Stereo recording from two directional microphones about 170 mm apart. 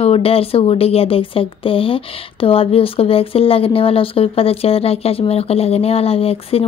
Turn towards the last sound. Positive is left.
turn(degrees=35)  # may be behind; listen again after turning